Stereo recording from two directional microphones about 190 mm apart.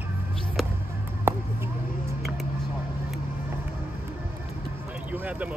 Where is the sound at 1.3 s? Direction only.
15° right (ahead or behind).